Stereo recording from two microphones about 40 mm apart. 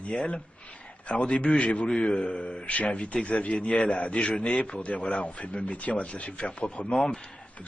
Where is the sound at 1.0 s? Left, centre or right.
Left.